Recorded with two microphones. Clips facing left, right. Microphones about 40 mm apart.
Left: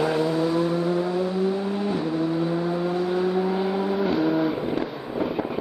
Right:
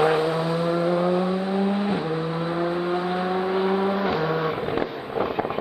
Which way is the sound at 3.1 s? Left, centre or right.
Right.